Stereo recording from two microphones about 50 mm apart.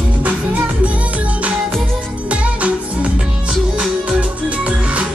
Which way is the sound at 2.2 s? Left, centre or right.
Right.